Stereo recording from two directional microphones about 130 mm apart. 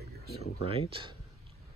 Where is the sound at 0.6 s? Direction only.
50° right (ahead or behind).